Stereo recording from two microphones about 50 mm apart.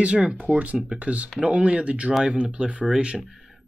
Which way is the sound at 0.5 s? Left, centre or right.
Right.